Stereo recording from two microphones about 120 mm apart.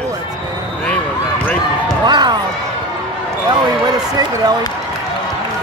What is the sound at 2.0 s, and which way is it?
Basketball bounce, 35° right (ahead or behind).